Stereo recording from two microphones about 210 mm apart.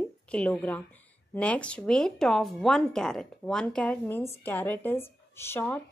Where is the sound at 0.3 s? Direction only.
5° left (ahead or behind).